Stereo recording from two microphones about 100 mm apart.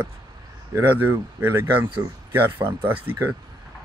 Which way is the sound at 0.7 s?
20° right (ahead or behind).